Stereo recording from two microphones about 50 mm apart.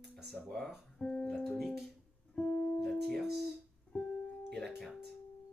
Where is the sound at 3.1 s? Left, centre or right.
Centre.